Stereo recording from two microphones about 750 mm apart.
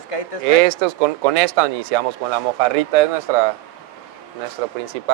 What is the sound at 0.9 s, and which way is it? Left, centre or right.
Speech, right.